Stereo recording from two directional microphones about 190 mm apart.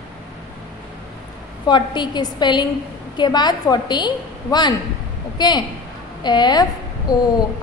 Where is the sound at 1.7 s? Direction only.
25° left (ahead or behind).